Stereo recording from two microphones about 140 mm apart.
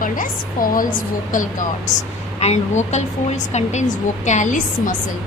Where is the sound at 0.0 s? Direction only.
75° left (ahead or behind).